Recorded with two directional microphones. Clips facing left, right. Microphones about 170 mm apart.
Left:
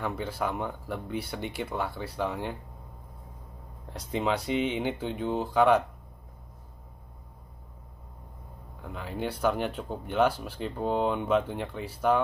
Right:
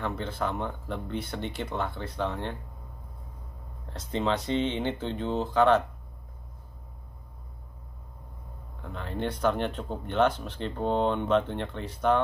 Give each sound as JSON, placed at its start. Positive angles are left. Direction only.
{"t": 0.0, "sound": "speech", "side_deg": 10}
{"t": 3.9, "sound": "speech", "side_deg": 10}
{"t": 8.8, "sound": "speech", "side_deg": 5}